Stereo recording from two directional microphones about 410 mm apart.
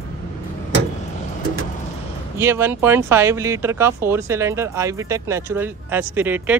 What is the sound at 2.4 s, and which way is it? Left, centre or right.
Speech, centre.